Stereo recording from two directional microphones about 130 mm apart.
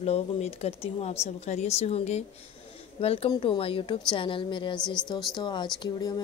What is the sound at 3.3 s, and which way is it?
A woman's voice, 40° left (ahead or behind).